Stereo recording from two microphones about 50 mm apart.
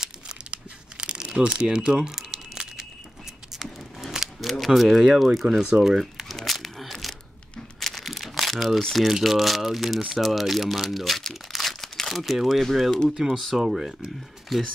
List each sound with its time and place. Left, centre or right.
0.0 s crumpling: centre
4.0 s speech: centre
5.6 s speech: right
5.9 s speech: centre
6.3 s crumpling: centre
8.9 s speech: centre
13.1 s speech: centre
13.4 s speech: centre